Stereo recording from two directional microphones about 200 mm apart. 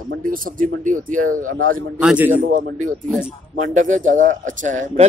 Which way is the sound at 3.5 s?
40° right (ahead or behind).